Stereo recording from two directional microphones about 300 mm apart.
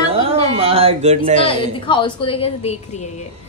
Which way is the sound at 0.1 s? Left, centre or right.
Centre.